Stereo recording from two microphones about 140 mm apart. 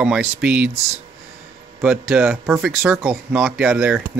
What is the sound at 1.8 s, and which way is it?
Speech, 15° right (ahead or behind).